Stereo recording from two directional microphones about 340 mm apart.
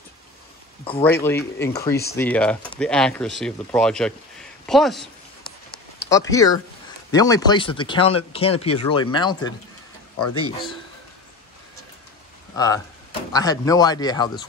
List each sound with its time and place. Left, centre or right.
1.0 s speech: centre
6.0 s speech: centre
12.5 s speech: centre